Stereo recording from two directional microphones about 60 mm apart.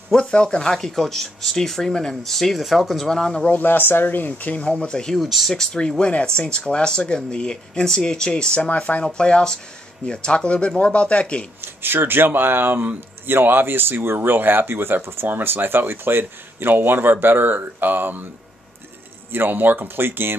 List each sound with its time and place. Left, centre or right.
0.1 s speech: centre
3.5 s speech: left; by 5.2 s centre
5.2 s speech: centre
11.6 s speech: right
19.3 s speech: right